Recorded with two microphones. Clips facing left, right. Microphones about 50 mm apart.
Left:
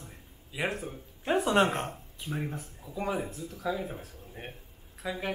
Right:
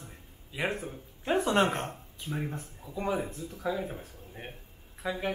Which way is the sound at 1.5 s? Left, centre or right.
Centre.